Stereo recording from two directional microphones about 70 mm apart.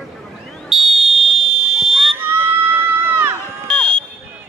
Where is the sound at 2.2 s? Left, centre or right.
Right.